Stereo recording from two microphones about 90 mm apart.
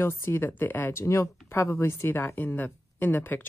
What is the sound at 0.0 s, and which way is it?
A woman's voice, 25° left (ahead or behind).